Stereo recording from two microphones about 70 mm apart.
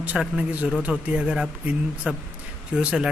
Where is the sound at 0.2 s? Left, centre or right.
Centre.